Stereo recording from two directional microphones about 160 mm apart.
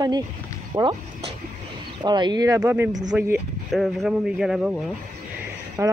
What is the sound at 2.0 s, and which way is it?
A man's voice, 25° right (ahead or behind).